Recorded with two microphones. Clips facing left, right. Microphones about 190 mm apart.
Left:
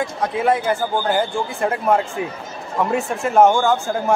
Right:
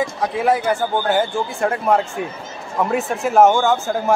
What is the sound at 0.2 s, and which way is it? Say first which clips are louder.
Speech: even; centre (ahead or behind).